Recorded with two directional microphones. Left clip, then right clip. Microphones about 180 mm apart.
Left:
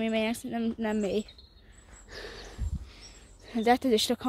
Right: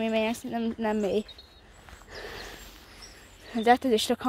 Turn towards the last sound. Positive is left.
turn(degrees=10)  # may be behind; listen again after turning